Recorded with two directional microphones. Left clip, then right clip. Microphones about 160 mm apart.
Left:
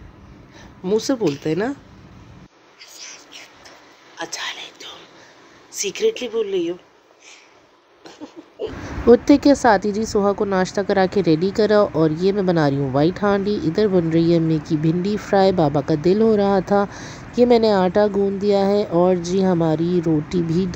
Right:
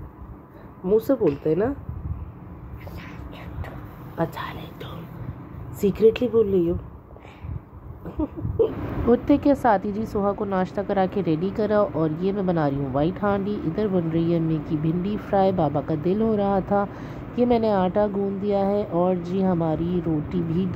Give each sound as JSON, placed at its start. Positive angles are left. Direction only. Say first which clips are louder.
{"t": 0.8, "sound": "speech", "louder": "even", "side_deg": 30}
{"t": 4.2, "sound": "a sound", "louder": "left 1 dB", "side_deg": 30}
{"t": 5.9, "sound": "speech", "louder": "right 3 dB", "side_deg": 25}
{"t": 9.0, "sound": "a woman's voice", "louder": "left 7 dB", "side_deg": 45}